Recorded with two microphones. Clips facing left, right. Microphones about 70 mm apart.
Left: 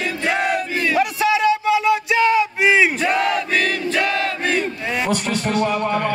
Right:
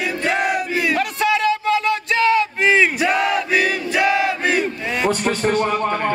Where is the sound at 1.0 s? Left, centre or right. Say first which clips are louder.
Left 1 dB; centre.